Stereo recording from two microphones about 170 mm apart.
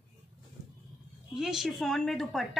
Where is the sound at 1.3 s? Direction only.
Centre (ahead or behind).